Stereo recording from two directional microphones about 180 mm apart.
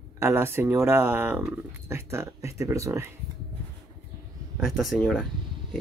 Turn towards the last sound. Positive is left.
turn(degrees=0)  # may be behind; listen again after turning